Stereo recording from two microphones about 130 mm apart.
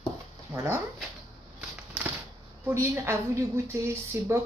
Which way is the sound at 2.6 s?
20° right (ahead or behind).